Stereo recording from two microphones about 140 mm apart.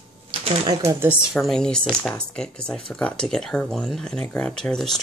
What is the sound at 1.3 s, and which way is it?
Speech, 5° left (ahead or behind).